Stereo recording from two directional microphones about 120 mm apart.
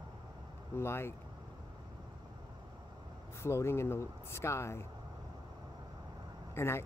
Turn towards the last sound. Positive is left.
turn(degrees=20)  # may be behind; listen again after turning